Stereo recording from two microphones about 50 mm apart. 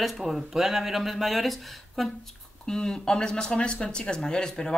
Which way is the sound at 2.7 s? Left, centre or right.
Centre.